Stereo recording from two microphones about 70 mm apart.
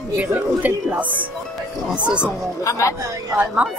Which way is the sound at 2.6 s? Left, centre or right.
Left.